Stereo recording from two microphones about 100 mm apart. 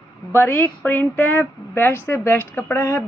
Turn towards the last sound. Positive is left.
turn(degrees=30)  # may be behind; listen again after turning